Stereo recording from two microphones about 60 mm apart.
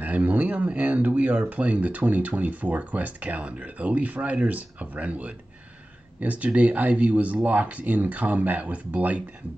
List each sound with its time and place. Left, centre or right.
0.0 s speech: right